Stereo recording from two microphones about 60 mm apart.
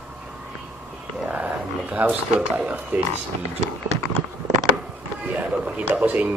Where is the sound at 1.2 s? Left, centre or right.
Right.